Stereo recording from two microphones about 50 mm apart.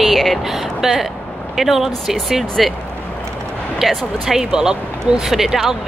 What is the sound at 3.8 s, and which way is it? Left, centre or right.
Speech, centre.